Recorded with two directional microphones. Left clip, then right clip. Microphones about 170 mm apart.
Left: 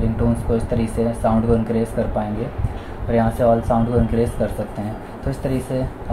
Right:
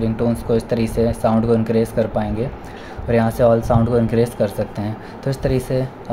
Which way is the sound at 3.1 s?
50° right (ahead or behind).